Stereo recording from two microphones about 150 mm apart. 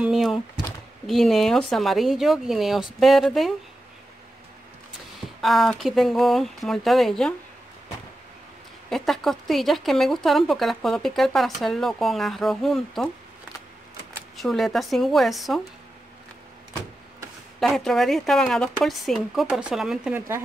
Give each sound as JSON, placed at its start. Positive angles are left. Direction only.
{"t": 0.0, "sound": "a sound", "side_deg": 0}
{"t": 1.0, "sound": "speech", "side_deg": 0}
{"t": 5.4, "sound": "speech", "side_deg": 0}
{"t": 8.9, "sound": "speech", "side_deg": 0}
{"t": 14.3, "sound": "speech", "side_deg": 0}
{"t": 17.6, "sound": "speech", "side_deg": 0}
{"t": 20.2, "sound": "speech", "side_deg": -15}